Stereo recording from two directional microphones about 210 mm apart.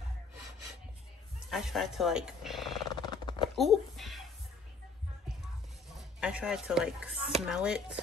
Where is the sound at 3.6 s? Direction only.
Centre (ahead or behind).